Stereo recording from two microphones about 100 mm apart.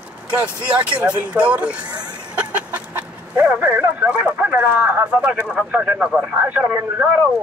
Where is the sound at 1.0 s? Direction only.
15° right (ahead or behind).